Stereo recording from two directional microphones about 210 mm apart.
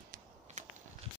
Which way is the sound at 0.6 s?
35° right (ahead or behind).